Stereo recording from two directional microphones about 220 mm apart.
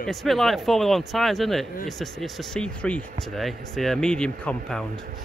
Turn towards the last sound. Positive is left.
turn(degrees=5)  # may be behind; listen again after turning